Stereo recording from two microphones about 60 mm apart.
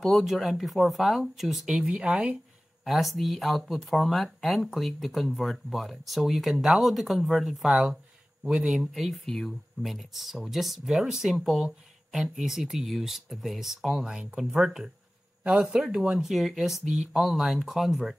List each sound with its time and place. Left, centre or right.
0.0 s speech: centre
1.8 s speech: centre
2.8 s speech: centre